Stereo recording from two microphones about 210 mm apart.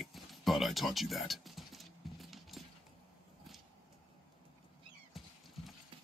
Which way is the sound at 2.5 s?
Centre (ahead or behind).